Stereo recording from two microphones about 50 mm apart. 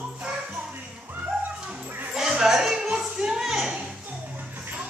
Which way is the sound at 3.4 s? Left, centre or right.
Centre.